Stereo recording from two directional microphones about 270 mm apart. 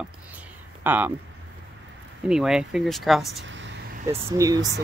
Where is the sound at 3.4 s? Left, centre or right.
Right.